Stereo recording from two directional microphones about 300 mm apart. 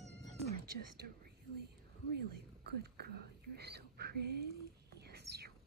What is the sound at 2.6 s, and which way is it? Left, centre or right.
Whispering, right.